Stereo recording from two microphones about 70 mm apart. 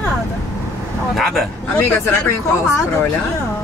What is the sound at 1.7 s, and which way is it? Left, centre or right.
Speech, left.